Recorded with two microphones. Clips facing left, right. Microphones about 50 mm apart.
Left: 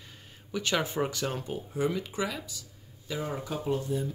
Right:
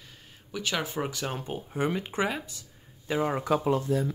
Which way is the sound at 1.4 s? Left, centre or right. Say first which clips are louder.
Right 3 dB; right.